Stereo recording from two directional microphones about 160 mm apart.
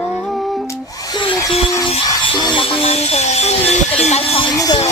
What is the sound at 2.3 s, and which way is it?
Speech, 30° left (ahead or behind).